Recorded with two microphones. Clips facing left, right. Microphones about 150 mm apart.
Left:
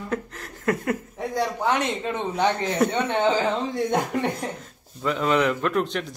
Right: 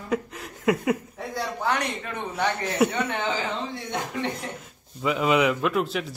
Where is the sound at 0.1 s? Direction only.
10° right (ahead or behind).